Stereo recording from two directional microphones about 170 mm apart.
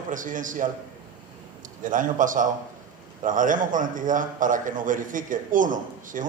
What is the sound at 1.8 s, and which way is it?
A man's voice, 50° right (ahead or behind).